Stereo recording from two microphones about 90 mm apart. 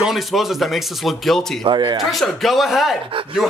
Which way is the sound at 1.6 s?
65° right (ahead or behind).